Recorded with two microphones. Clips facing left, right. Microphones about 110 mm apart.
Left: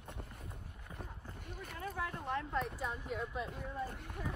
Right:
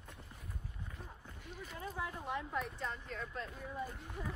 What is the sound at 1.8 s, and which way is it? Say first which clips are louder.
Speech: left 2 dB; 20° right (ahead or behind).